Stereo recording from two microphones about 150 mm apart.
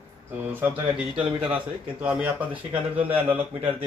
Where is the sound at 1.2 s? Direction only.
35° right (ahead or behind).